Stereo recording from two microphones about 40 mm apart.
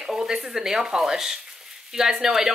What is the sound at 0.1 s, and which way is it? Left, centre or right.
A woman's voice, centre.